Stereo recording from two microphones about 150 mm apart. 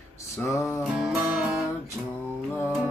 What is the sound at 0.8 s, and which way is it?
Music, 5° right (ahead or behind).